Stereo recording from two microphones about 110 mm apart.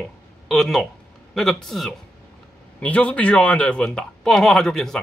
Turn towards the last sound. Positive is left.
turn(degrees=5)  # may be behind; listen again after turning